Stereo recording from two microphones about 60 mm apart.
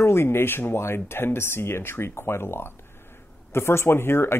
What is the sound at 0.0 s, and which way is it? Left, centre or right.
Speech, left.